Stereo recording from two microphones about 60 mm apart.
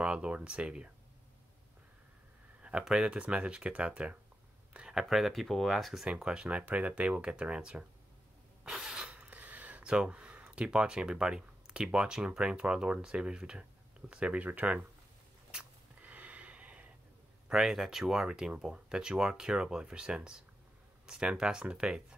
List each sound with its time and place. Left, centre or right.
0.0 s speech: centre
2.8 s speech: centre
4.7 s a sound: centre
5.0 s speech: centre
6.0 s speech: centre
8.6 s a sound: centre
9.1 s speech: right
15.5 s a sound: right
17.5 s speech: centre